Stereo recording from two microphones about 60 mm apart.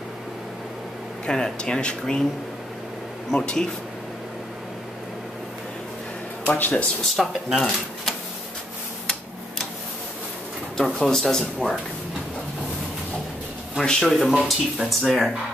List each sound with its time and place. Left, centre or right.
1.2 s speech: centre
3.3 s speech: centre
6.4 s speech: left
7.2 s speech: centre
11.0 s speech: centre
13.7 s speech: centre